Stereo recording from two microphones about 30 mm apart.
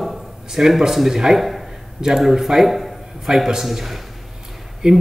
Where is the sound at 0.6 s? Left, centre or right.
Right.